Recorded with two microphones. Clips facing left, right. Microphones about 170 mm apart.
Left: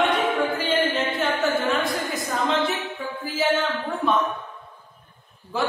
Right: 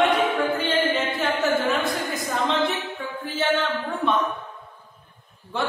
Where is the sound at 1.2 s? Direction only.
Centre (ahead or behind).